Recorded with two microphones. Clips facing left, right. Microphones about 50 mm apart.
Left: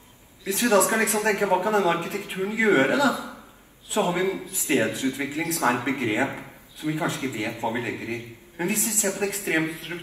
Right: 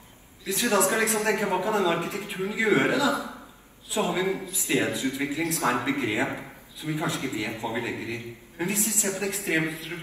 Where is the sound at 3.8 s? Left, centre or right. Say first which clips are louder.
Left 2 dB; left.